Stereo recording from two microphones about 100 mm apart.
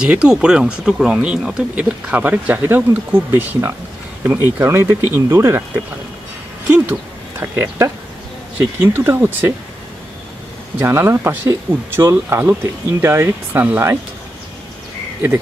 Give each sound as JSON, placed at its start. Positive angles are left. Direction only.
{"t": 0.0, "sound": "speech", "side_deg": -10}
{"t": 6.7, "sound": "speech", "side_deg": -20}
{"t": 10.8, "sound": "speech", "side_deg": -25}